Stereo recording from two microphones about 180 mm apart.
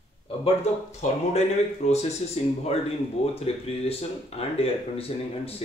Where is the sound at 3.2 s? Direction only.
35° left (ahead or behind).